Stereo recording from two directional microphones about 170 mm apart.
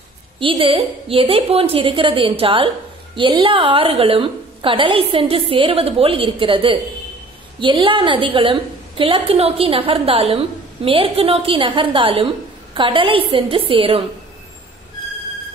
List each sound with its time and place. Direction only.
0.4 s a woman's voice: 30° right (ahead or behind)